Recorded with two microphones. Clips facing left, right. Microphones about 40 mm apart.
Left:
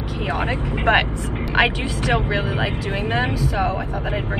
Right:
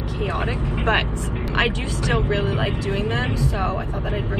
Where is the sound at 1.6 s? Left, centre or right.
Left.